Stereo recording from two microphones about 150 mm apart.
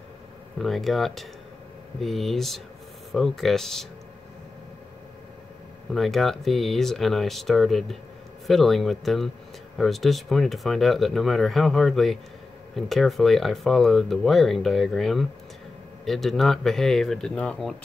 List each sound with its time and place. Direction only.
0.6 s speech: centre (ahead or behind)
5.9 s speech: centre (ahead or behind)